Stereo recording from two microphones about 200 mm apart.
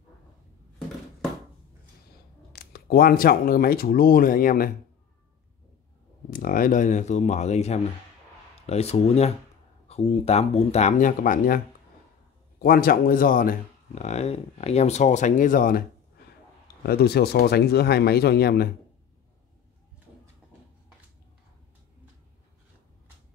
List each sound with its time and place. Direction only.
2.5 s speech: 50° left (ahead or behind)
6.3 s speech: 45° left (ahead or behind)